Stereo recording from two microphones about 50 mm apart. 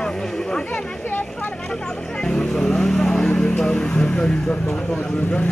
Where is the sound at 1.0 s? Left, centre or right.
Left.